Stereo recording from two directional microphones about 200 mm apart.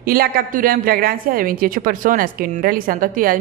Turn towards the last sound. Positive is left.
turn(degrees=-45)  # may be behind; listen again after turning